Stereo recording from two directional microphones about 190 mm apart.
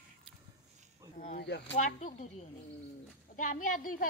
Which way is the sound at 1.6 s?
40° left (ahead or behind).